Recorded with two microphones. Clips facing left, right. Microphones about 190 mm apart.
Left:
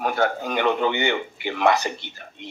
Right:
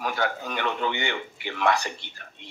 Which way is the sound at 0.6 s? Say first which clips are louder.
Left 7 dB; 60° left (ahead or behind).